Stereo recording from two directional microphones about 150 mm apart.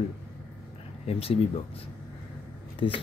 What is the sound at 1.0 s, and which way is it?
Speech, 40° left (ahead or behind).